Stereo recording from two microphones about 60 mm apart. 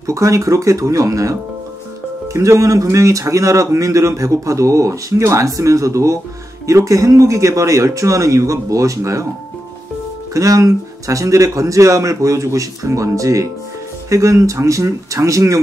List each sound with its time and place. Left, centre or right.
0.0 s speech: right
2.3 s speech: right
10.3 s speech: right